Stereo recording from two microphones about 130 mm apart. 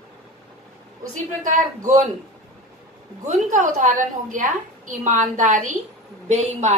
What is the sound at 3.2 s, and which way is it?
A woman's voice, 75° right (ahead or behind).